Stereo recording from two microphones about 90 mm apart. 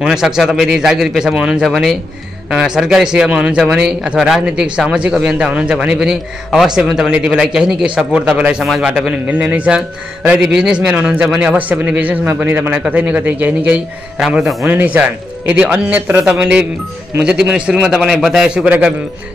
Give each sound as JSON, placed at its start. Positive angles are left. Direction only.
{"t": 0.0, "sound": "a man's voice", "side_deg": -5}
{"t": 14.1, "sound": "a man's voice", "side_deg": -5}
{"t": 14.7, "sound": "speech", "side_deg": -15}